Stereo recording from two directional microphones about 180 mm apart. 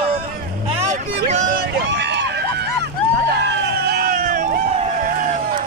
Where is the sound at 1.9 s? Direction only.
70° right (ahead or behind); by 4.8 s 45° right (ahead or behind).